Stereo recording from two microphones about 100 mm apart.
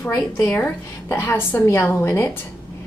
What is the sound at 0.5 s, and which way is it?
A woman's voice, 30° left (ahead or behind).